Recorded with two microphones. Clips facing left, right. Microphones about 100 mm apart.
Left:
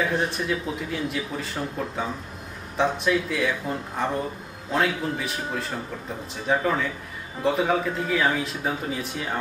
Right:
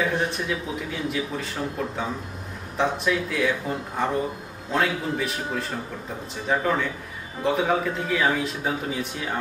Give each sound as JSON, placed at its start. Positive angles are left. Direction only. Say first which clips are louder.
{"t": 0.0, "sound": "speech", "louder": "even", "side_deg": 0}